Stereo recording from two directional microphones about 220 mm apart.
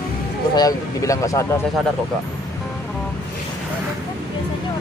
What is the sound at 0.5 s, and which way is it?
Speech, 15° left (ahead or behind).